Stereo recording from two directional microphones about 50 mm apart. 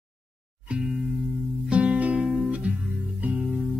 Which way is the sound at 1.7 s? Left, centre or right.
Right.